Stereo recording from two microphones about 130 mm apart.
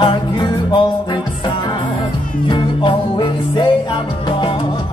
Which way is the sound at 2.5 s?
40° left (ahead or behind).